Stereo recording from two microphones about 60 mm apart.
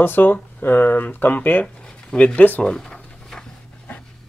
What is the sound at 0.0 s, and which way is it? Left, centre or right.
Speech, left.